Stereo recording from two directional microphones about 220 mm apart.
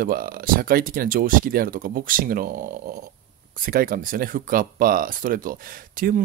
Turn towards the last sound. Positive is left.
turn(degrees=-40)  # may be behind; listen again after turning